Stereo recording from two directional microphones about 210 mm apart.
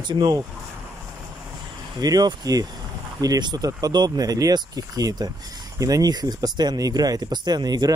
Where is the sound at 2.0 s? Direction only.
20° right (ahead or behind).